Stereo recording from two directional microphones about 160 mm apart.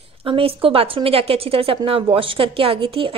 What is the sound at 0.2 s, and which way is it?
A woman's voice, 35° right (ahead or behind).